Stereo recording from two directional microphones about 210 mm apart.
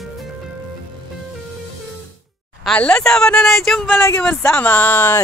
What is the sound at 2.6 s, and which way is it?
Speech, 5° left (ahead or behind).